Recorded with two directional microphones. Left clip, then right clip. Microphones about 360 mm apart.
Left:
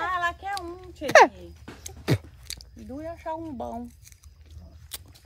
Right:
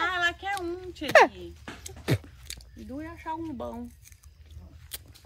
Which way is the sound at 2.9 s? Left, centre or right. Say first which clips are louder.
Left 2 dB; left.